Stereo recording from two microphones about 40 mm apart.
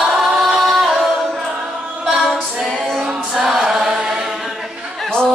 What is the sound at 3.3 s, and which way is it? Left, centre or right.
Choir, centre.